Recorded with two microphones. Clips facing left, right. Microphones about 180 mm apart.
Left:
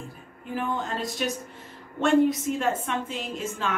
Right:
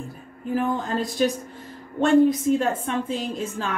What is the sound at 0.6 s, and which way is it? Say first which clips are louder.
A woman's voice: right 4 dB; 35° right (ahead or behind).